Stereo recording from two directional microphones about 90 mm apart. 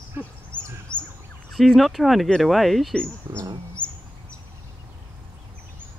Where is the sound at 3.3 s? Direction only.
45° right (ahead or behind).